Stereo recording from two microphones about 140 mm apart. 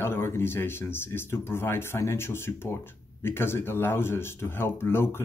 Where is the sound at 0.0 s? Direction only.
15° left (ahead or behind).